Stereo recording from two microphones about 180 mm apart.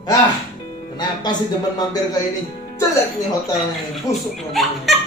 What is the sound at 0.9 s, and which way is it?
Speech, 25° left (ahead or behind).